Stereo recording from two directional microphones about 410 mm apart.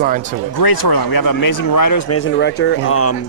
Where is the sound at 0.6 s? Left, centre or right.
Left.